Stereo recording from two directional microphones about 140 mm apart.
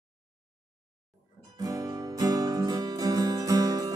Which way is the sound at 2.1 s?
25° right (ahead or behind).